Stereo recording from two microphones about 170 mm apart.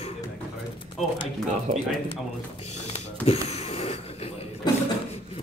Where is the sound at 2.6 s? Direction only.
40° left (ahead or behind).